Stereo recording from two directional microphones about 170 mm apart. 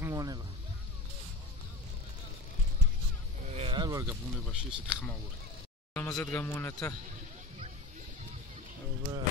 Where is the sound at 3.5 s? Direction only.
40° right (ahead or behind).